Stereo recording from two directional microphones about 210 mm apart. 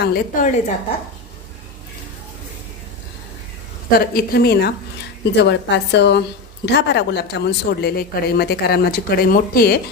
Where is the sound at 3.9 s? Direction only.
45° left (ahead or behind).